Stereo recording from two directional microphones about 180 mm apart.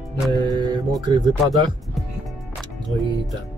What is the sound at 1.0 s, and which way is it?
Speech, 25° right (ahead or behind).